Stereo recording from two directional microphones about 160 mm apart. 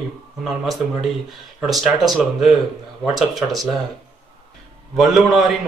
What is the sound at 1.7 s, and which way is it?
A man's voice, centre (ahead or behind).